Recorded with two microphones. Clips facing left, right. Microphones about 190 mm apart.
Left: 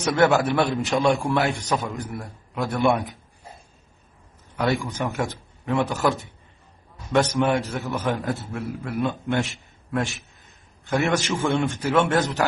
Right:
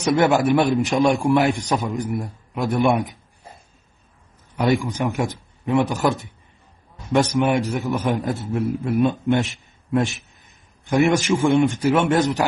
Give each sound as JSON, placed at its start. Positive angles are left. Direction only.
{"t": 0.0, "sound": "a man's voice", "side_deg": -15}
{"t": 4.6, "sound": "a man's voice", "side_deg": -15}
{"t": 10.9, "sound": "a man's voice", "side_deg": -15}